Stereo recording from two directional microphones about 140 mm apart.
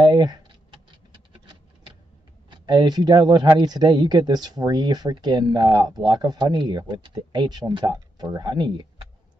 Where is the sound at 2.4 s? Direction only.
30° right (ahead or behind).